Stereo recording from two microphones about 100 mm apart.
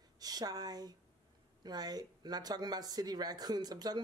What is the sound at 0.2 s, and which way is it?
Speech, 40° right (ahead or behind).